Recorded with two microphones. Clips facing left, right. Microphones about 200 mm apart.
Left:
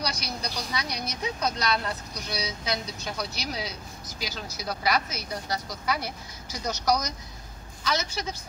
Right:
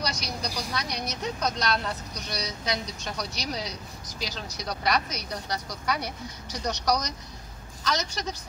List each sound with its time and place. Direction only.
0.0 s a woman's voice: centre (ahead or behind)